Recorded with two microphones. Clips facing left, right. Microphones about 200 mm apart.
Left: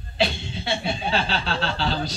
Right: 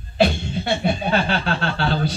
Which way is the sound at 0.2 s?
50° right (ahead or behind).